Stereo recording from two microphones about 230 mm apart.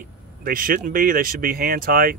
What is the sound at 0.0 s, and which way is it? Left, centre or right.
Speech, right.